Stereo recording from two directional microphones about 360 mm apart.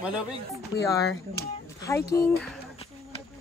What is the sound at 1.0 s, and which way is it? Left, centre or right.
Speech, left.